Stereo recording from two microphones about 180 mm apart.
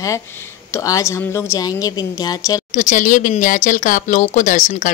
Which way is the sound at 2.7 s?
45° left (ahead or behind).